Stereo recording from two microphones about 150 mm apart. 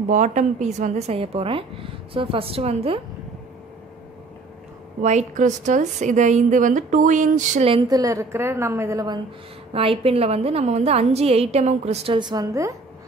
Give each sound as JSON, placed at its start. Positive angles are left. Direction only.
{"t": 0.1, "sound": "a woman's voice", "side_deg": -55}
{"t": 5.0, "sound": "a woman's voice", "side_deg": -55}
{"t": 7.9, "sound": "a woman's voice", "side_deg": -25}
{"t": 9.7, "sound": "a woman's voice", "side_deg": -40}
{"t": 12.2, "sound": "a woman's voice", "side_deg": -25}